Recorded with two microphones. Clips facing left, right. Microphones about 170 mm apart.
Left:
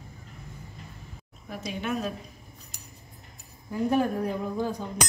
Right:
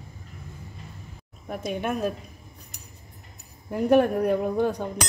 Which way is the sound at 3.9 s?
65° right (ahead or behind).